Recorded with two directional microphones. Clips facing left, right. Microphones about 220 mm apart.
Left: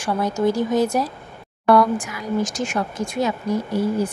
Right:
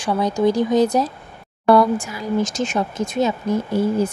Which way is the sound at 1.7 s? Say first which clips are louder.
Right 2 dB; 25° right (ahead or behind).